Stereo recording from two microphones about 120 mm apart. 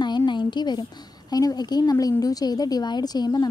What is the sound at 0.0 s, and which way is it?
A woman's voice, 40° left (ahead or behind).